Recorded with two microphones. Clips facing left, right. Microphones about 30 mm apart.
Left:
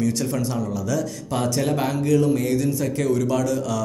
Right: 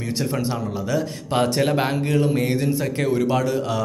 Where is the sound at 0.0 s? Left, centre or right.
Right.